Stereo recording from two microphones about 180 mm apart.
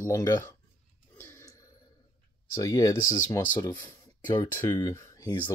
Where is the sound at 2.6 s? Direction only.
20° left (ahead or behind).